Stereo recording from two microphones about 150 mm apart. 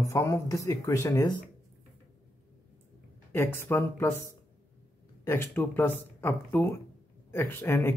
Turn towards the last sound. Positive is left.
turn(degrees=15)  # may be behind; listen again after turning